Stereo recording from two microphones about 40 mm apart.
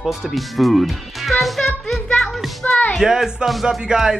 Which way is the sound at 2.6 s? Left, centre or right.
Left.